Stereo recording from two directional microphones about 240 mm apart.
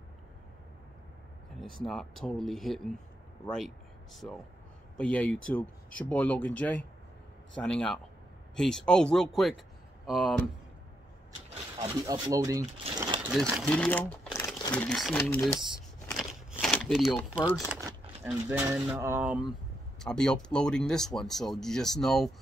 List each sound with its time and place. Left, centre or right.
1.6 s speech: centre
11.8 s speech: centre
13.3 s speech: centre
15.2 s a sound: centre
17.6 s speech: centre